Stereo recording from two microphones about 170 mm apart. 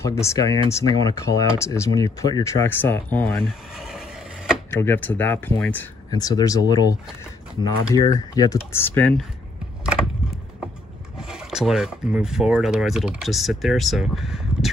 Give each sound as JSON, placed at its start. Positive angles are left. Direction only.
{"t": 0.0, "sound": "speech", "side_deg": 15}
{"t": 3.4, "sound": "a sound", "side_deg": 0}
{"t": 4.6, "sound": "speech", "side_deg": 15}
{"t": 6.0, "sound": "speech", "side_deg": 25}
{"t": 8.8, "sound": "speech", "side_deg": 10}
{"t": 11.1, "sound": "speech", "side_deg": -5}